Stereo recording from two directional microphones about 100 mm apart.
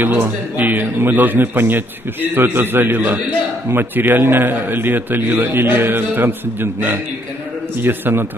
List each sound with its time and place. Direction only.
0.0 s a man's voice: 20° right (ahead or behind)